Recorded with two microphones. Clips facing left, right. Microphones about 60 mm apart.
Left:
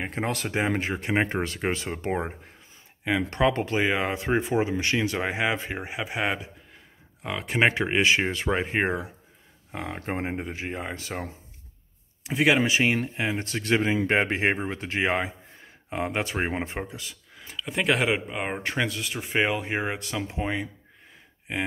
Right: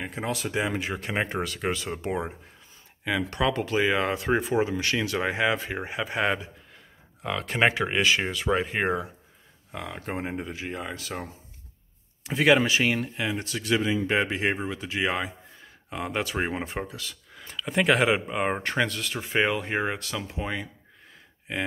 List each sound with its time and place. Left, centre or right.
0.0 s speech: left
0.5 s speech: left; by 7.7 s centre
7.7 s speech: left
12.2 s speech: centre
12.5 s speech: left
17.4 s speech: centre
20.0 s speech: left